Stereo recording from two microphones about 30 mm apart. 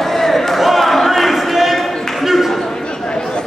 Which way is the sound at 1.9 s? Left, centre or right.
Centre.